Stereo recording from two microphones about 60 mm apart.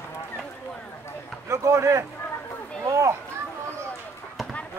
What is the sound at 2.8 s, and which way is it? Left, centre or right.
Children playing, right.